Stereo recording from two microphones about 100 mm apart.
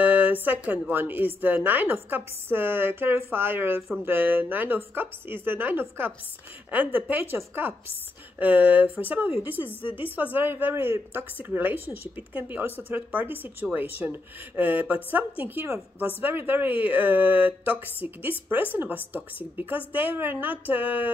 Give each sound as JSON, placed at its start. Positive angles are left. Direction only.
{"t": 0.0, "sound": "speech", "side_deg": -15}